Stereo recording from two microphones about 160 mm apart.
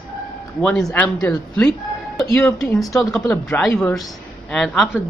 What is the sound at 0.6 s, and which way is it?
Speech, 5° left (ahead or behind).